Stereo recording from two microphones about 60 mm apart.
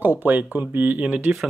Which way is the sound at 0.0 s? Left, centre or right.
Right.